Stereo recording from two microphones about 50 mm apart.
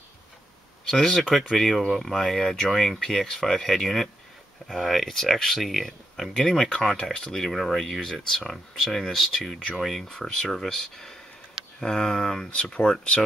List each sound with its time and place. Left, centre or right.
0.8 s speech: centre
7.5 s speech: centre
8.4 s speech: centre